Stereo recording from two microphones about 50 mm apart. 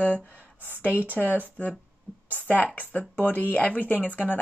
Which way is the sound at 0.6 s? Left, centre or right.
Right.